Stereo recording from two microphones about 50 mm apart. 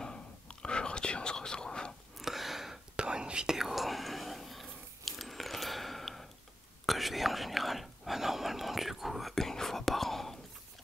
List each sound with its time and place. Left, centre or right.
0.0 s whispering: centre
2.1 s a sound: centre
3.0 s whispering: centre